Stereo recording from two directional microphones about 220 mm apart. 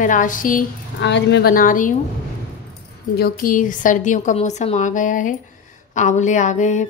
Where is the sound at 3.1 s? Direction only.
45° left (ahead or behind).